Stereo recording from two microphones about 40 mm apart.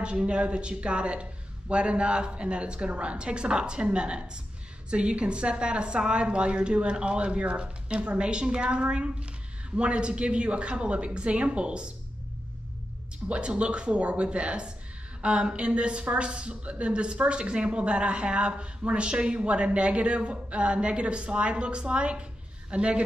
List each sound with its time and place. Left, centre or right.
0.0 s a woman's voice: right
13.3 s a woman's voice: right